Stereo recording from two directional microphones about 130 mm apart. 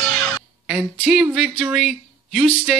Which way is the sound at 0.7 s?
10° right (ahead or behind).